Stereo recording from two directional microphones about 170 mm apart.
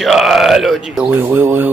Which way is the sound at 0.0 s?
Centre (ahead or behind).